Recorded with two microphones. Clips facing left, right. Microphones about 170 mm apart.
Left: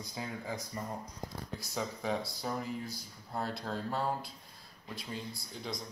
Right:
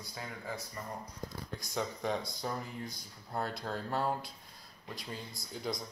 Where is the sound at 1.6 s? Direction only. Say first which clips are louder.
Right 1 dB; 5° left (ahead or behind).